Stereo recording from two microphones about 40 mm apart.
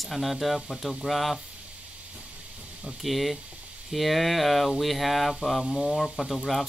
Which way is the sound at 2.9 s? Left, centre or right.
Centre.